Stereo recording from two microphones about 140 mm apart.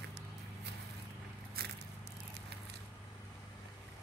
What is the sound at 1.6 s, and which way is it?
Biting, 90° right.